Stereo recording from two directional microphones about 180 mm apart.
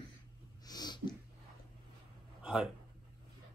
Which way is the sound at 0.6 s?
20° left (ahead or behind).